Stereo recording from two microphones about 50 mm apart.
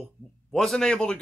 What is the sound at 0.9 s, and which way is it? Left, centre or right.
Speech, centre.